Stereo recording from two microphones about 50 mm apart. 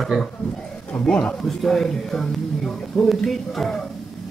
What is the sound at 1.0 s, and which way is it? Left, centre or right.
Speech, left.